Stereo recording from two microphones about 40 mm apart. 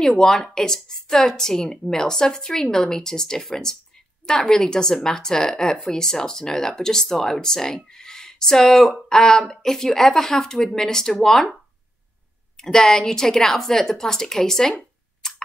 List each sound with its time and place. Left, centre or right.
0.0 s speech: centre
12.5 s speech: centre
15.2 s a sound: centre